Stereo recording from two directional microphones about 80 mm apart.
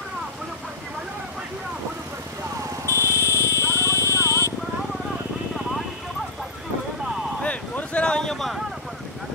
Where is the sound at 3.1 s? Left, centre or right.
Left.